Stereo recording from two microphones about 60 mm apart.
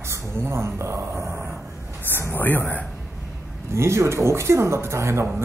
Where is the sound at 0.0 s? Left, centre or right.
Right.